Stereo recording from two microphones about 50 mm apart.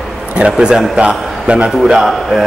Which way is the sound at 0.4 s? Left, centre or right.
Centre.